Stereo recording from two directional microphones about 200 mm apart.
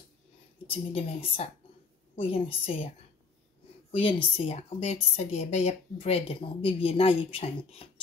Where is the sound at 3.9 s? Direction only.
25° left (ahead or behind).